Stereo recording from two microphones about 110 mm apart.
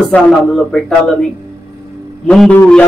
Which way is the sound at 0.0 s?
5° left (ahead or behind).